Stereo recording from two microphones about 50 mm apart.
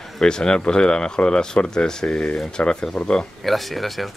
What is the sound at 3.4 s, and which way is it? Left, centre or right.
Speech, centre.